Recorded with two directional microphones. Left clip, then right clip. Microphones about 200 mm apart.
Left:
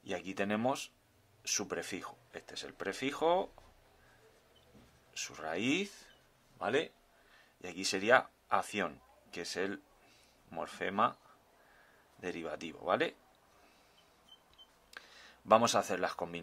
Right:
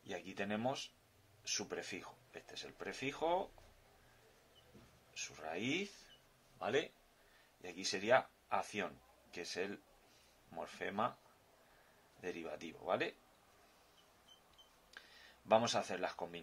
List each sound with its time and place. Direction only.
0.0 s a sound: 40° left (ahead or behind)
1.4 s speech: 40° left (ahead or behind)
5.1 s speech: 40° left (ahead or behind)
12.2 s speech: 40° left (ahead or behind)
15.0 s speech: 40° left (ahead or behind)